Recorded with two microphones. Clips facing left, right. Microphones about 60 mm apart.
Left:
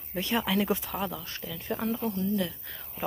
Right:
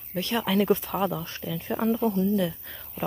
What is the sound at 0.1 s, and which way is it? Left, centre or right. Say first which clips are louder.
Speech: right 1 dB; left.